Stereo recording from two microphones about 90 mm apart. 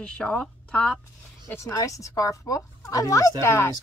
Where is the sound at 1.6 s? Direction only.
40° left (ahead or behind).